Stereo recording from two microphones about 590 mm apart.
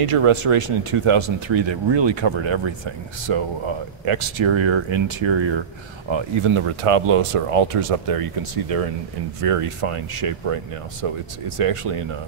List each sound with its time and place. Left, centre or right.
0.0 s speech: right
9.4 s speech: right